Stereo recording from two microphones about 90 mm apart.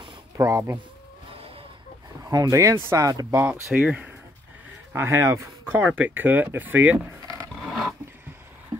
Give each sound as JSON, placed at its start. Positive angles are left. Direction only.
{"t": 0.4, "sound": "speech", "side_deg": -35}
{"t": 2.2, "sound": "speech", "side_deg": -35}
{"t": 3.7, "sound": "speech", "side_deg": -15}
{"t": 4.9, "sound": "speech", "side_deg": -30}
{"t": 5.7, "sound": "speech", "side_deg": -20}
{"t": 7.6, "sound": "filing", "side_deg": 0}